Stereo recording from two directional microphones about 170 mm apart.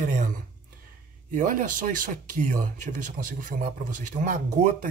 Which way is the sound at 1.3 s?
50° right (ahead or behind).